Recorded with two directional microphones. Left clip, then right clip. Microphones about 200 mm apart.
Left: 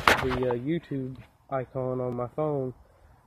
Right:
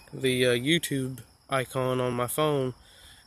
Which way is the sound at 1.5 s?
50° right (ahead or behind).